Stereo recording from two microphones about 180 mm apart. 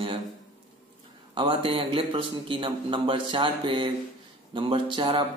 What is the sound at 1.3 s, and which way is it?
A man's voice, 30° right (ahead or behind).